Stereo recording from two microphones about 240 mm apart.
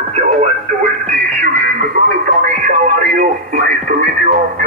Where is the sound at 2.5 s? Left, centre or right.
Right.